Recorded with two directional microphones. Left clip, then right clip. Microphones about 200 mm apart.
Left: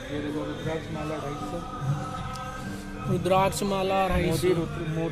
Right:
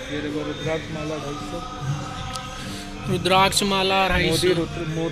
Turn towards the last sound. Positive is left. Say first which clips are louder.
# right 5 dB
turn(degrees=5)  # may be behind; listen again after turning